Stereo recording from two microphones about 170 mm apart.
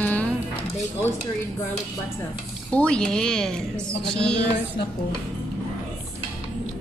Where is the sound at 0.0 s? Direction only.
10° left (ahead or behind).